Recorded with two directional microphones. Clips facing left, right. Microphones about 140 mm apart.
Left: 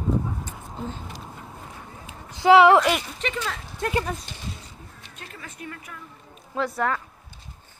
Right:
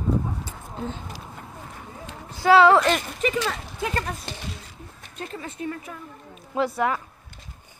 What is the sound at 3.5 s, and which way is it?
Speech, 5° right (ahead or behind).